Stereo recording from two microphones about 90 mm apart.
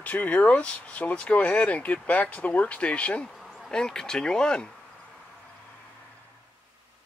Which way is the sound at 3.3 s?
Centre (ahead or behind).